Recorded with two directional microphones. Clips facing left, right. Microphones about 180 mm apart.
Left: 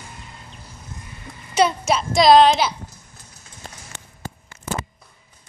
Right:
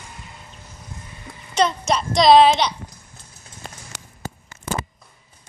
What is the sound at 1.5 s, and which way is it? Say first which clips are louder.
A child's voice: left 1 dB; 5° left (ahead or behind).